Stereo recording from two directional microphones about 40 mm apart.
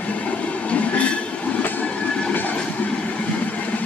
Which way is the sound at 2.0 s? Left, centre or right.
Left.